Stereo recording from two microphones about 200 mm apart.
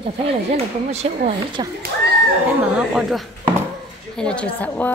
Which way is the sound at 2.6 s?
5° right (ahead or behind).